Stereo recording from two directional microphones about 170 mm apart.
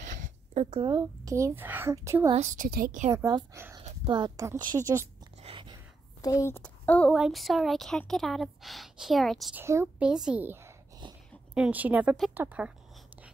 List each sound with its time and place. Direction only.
0.0 s speech: 45° right (ahead or behind); by 2.3 s 15° right (ahead or behind)
2.3 s a woman's voice: 45° right (ahead or behind)
3.3 s a woman's voice: 25° right (ahead or behind)
5.4 s a sound: 30° right (ahead or behind)
6.2 s a woman's voice: 15° left (ahead or behind); by 9.6 s centre (ahead or behind)
9.6 s a woman's voice: 15° right (ahead or behind)